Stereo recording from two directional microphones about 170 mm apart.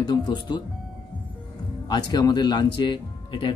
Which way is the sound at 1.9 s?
25° left (ahead or behind).